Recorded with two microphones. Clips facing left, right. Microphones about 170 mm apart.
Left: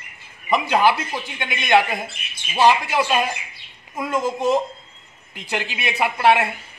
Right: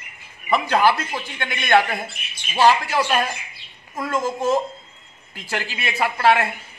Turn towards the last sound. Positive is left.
turn(degrees=20)  # may be behind; listen again after turning